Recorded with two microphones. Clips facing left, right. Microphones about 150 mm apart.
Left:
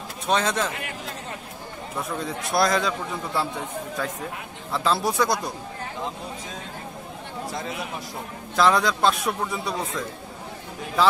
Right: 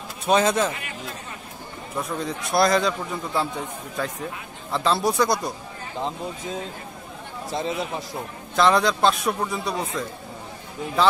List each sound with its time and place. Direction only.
0.3 s a man's voice: 5° right (ahead or behind)
2.2 s a man's voice: centre (ahead or behind)
4.0 s a man's voice: centre (ahead or behind)
7.5 s a man's voice: 25° right (ahead or behind)
8.5 s a man's voice: centre (ahead or behind)